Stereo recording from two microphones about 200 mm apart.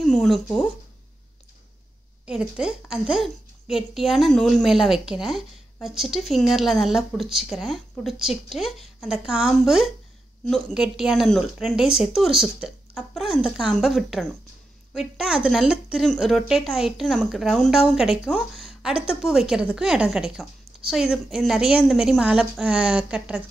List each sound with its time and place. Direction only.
0.0 s speech: centre (ahead or behind)
2.2 s a woman's voice: 5° right (ahead or behind)